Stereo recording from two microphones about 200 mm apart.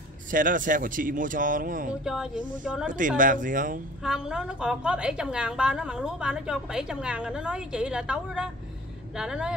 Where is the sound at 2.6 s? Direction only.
5° right (ahead or behind).